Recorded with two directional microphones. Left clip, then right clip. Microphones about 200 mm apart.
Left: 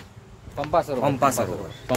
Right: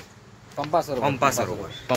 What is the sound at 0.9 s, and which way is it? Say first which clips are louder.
Speech: left 1 dB; 50° right (ahead or behind).